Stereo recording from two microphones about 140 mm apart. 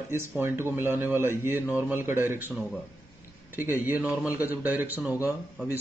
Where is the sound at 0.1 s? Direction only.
15° right (ahead or behind).